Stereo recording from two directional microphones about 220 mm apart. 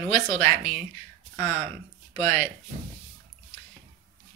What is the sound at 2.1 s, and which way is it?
Speech, 10° left (ahead or behind).